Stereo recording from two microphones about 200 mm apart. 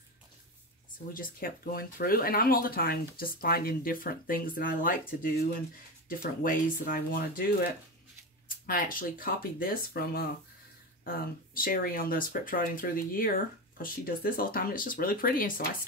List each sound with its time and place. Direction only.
0.9 s speech: 45° left (ahead or behind)
6.0 s speech: 45° left (ahead or behind)